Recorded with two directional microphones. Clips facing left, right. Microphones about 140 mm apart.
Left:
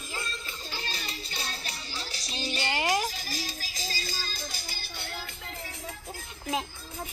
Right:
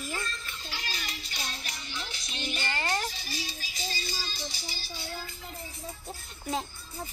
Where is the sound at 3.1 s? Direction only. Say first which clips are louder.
Left 2 dB; 45° left (ahead or behind).